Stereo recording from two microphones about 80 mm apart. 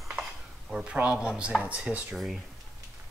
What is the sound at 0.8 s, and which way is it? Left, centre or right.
Speech, centre.